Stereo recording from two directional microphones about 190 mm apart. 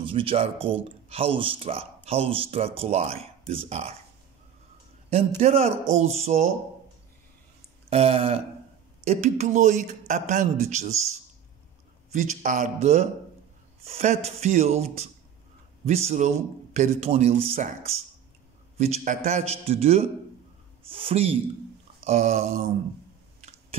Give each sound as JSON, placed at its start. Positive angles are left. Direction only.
{"t": 0.0, "sound": "speech", "side_deg": -30}
{"t": 5.4, "sound": "speech", "side_deg": -35}
{"t": 7.9, "sound": "speech", "side_deg": -30}
{"t": 12.1, "sound": "speech", "side_deg": -40}
{"t": 18.8, "sound": "speech", "side_deg": -35}